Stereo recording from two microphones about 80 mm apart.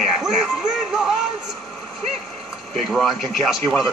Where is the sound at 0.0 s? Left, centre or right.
Centre.